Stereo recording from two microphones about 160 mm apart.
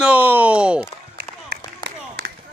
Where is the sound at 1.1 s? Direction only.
90° right.